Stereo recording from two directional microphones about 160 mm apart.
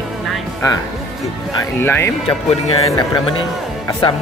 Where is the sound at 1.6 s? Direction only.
15° left (ahead or behind).